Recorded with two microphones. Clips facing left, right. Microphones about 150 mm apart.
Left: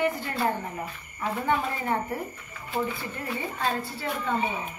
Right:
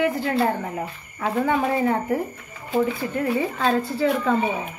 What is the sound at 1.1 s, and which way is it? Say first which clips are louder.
A woman's voice: right 5 dB; 80° right.